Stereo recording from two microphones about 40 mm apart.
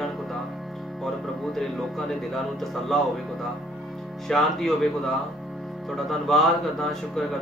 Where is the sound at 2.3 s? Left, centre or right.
Centre.